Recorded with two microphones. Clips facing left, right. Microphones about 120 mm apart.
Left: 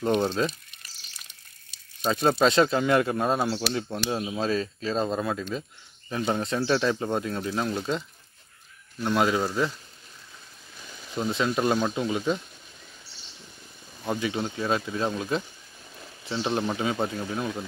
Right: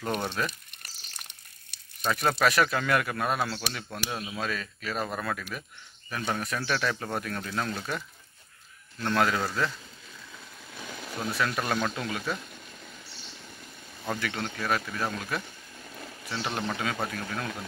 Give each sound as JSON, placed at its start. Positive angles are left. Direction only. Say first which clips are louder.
{"t": 0.0, "sound": "speech", "louder": "left 6 dB", "side_deg": 20}
{"t": 0.5, "sound": "crumpling", "louder": "left 2 dB", "side_deg": -60}
{"t": 2.0, "sound": "speech", "louder": "left 4 dB", "side_deg": 25}
{"t": 9.0, "sound": "speech", "louder": "left 3 dB", "side_deg": 15}
{"t": 11.1, "sound": "speech", "louder": "left 4 dB", "side_deg": 20}
{"t": 14.0, "sound": "speech", "louder": "left 4 dB", "side_deg": 15}